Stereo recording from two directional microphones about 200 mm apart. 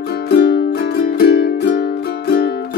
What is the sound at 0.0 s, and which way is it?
Music, 55° left (ahead or behind).